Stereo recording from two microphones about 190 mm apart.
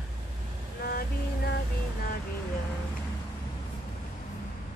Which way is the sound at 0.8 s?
55° left (ahead or behind).